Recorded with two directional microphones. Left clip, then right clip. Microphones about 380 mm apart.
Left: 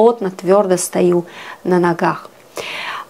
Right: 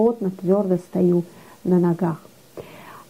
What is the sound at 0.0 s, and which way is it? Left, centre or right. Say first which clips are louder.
A woman's voice: left 8 dB; centre.